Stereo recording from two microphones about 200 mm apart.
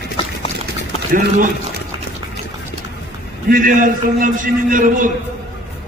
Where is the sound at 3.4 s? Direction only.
40° right (ahead or behind).